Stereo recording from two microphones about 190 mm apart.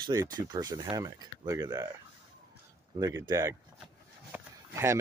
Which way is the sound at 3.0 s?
20° right (ahead or behind).